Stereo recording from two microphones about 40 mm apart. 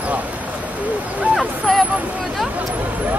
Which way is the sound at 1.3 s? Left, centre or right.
Centre.